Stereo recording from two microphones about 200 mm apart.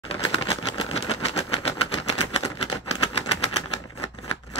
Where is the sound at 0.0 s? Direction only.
30° left (ahead or behind).